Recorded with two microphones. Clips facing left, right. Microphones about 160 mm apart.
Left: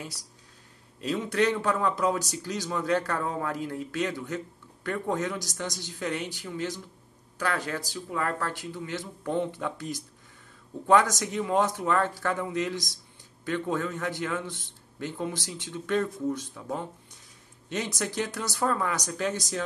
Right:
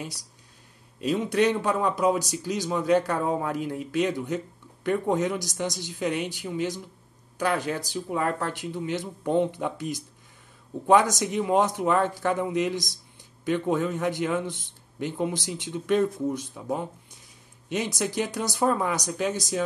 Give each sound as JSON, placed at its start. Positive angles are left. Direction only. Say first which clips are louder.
{"t": 1.0, "sound": "speech", "louder": "right 3 dB", "side_deg": -15}